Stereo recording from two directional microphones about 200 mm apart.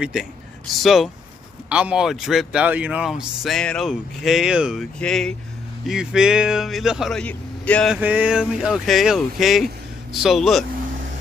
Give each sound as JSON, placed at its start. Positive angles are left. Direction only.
{"t": 0.0, "sound": "speech", "side_deg": -5}
{"t": 7.9, "sound": "speech", "side_deg": -5}